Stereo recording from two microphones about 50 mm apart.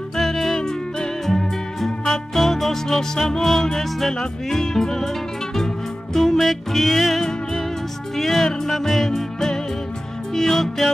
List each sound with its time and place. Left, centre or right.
0.1 s music: centre